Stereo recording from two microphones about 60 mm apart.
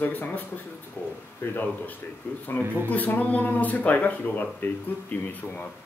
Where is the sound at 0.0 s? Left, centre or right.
Left.